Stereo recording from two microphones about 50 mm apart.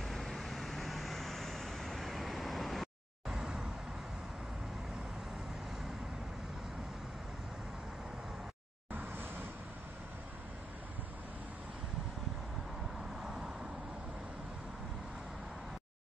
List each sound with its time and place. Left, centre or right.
0.0 s vehicle: centre
3.3 s vehicle: centre
8.9 s vehicle: right
13.2 s vehicle: centre